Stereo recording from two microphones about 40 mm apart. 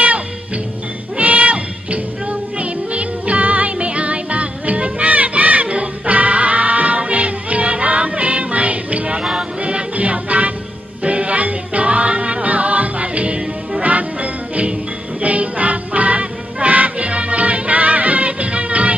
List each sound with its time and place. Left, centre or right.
1.1 s music: right
9.1 s music: centre
9.6 s music: right